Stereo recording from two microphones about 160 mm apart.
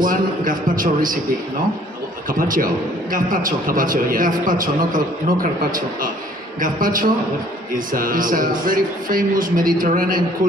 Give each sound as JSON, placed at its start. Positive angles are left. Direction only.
{"t": 0.0, "sound": "a man's voice", "side_deg": -60}
{"t": 2.2, "sound": "a man's voice", "side_deg": -60}